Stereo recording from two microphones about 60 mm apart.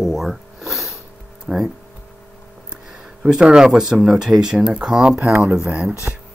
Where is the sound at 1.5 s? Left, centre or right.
Right.